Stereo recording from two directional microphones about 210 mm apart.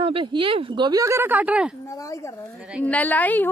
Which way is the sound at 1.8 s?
15° left (ahead or behind).